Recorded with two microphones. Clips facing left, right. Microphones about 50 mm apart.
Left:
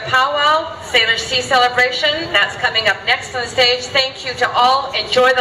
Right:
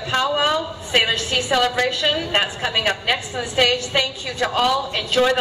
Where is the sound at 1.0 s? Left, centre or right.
Left.